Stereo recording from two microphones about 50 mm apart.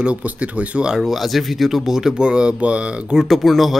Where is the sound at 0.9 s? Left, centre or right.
Centre; by 3.2 s right.